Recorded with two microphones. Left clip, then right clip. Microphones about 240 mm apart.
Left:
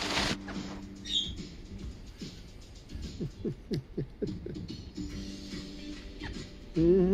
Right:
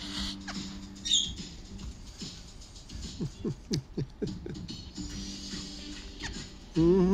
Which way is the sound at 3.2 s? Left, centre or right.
Right.